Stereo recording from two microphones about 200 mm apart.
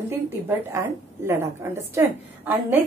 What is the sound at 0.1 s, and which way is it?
A woman's voice, 10° right (ahead or behind).